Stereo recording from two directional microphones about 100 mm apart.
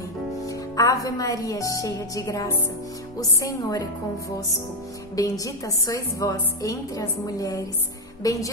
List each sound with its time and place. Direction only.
0.4 s a woman's voice: 35° left (ahead or behind)
5.1 s a woman's voice: 35° left (ahead or behind)